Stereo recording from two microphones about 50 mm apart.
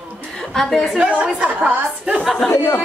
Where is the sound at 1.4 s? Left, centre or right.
Right.